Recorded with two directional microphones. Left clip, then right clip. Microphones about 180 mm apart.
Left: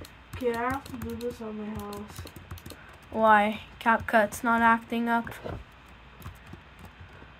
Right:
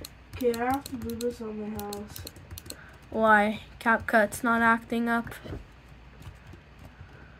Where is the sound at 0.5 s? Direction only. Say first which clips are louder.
Right 2 dB; 70° right (ahead or behind).